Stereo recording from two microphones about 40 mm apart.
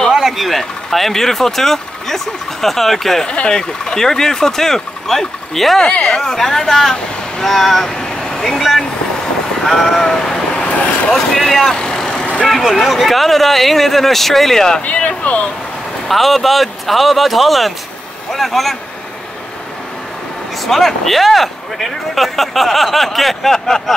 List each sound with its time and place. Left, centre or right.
0.1 s a sound: centre
0.5 s speech: centre
3.3 s speech: left; by 5.9 s centre
5.9 s speech: left
6.1 s speech: centre
7.9 s vehicle: centre
8.5 s speech: centre
10.0 s vehicle: centre
11.1 s speech: centre
11.7 s vehicle: centre
12.7 s speech: centre
14.9 s speech: left
16.1 s speech: centre
20.6 s speech: centre